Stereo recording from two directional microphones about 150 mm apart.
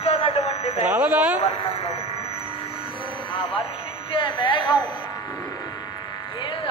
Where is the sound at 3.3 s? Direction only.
35° left (ahead or behind).